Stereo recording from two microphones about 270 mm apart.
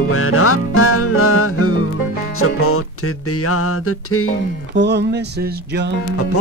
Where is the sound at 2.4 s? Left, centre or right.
Left.